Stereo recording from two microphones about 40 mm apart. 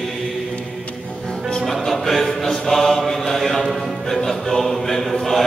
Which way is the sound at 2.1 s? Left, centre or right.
Centre.